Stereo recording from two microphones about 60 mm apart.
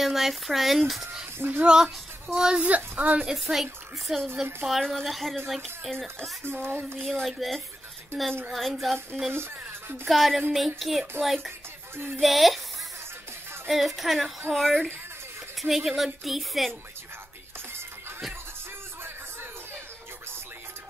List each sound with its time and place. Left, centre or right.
0.0 s speech: centre
1.4 s speech: right
1.7 s speech: centre
2.7 s a woman's voice: right
3.2 s speech: centre
6.4 s speech: right
7.0 s speech: centre
9.3 s speech: right
10.0 s speech: centre
13.7 s speech: centre